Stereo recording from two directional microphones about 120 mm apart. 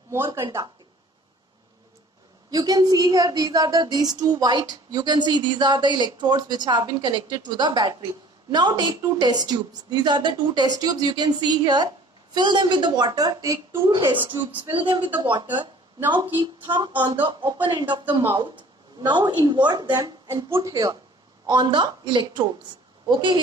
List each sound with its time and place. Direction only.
0.1 s speech: 20° right (ahead or behind)
2.5 s speech: 30° right (ahead or behind)
14.7 s speech: 45° right (ahead or behind)
20.2 s speech: 20° right (ahead or behind)
21.5 s speech: 40° right (ahead or behind)